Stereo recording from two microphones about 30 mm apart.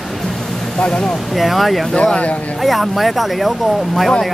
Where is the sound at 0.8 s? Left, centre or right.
Left.